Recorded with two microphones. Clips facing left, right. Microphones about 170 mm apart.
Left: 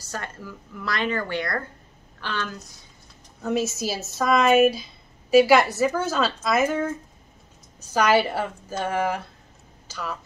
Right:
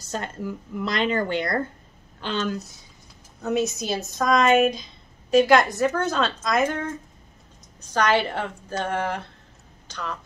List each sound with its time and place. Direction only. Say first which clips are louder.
0.1 s a woman's voice: right 5 dB; 20° right (ahead or behind)
3.4 s a woman's voice: right 1 dB; centre (ahead or behind)